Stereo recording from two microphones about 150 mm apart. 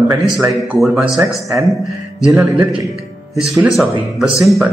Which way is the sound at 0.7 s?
Centre (ahead or behind).